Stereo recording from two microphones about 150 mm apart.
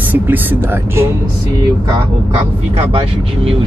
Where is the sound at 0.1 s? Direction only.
10° right (ahead or behind).